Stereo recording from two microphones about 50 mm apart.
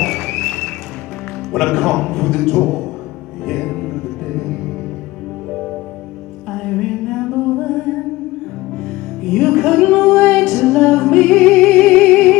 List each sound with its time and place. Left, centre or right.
0.0 s music: centre
1.5 s a man's voice: centre
3.4 s music: centre
6.5 s music: centre
9.2 s music: centre